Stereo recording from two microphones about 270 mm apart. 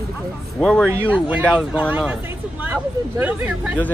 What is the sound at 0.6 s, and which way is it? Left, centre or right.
Speech, centre.